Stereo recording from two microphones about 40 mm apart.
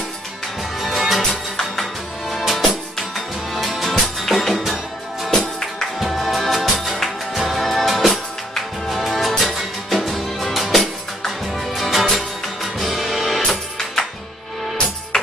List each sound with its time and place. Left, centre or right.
0.7 s music: centre
5.3 s music: centre
5.9 s music: centre